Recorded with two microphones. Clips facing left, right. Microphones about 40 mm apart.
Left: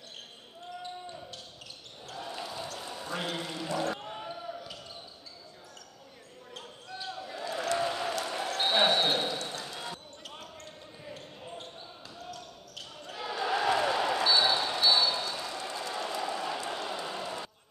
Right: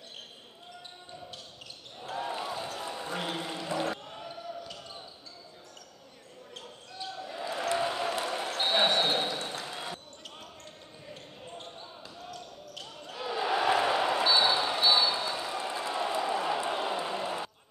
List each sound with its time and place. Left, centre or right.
2.0 s basketball bounce: right
3.3 s a sound: centre
4.0 s basketball bounce: centre
7.0 s basketball bounce: centre
7.3 s basketball bounce: centre
11.1 s basketball bounce: centre
13.4 s basketball bounce: centre